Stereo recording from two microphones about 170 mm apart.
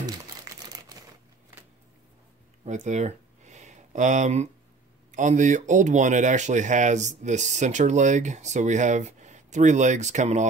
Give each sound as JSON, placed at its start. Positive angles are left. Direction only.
{"t": 0.0, "sound": "crumpling", "side_deg": -20}
{"t": 2.6, "sound": "a sound", "side_deg": -45}
{"t": 5.1, "sound": "speech", "side_deg": -45}